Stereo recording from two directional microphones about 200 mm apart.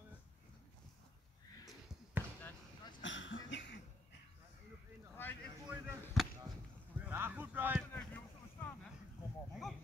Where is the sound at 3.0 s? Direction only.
70° left (ahead or behind).